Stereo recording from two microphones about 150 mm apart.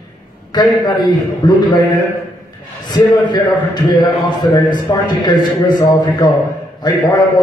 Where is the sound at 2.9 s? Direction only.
30° left (ahead or behind).